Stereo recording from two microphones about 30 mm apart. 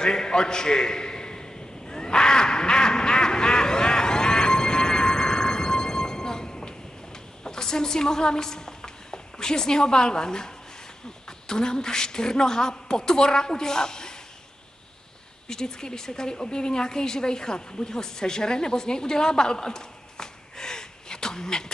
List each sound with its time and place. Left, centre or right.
0.0 s a sound: left
7.4 s a woman's voice: left
15.4 s a woman's voice: left